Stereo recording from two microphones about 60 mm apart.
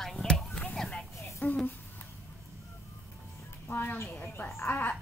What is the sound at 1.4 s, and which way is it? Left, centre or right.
Speech, left.